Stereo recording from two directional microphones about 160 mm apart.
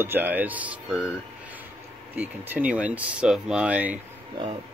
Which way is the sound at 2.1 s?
10° right (ahead or behind).